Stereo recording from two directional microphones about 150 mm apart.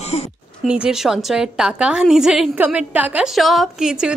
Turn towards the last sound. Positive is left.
turn(degrees=-5)  # may be behind; listen again after turning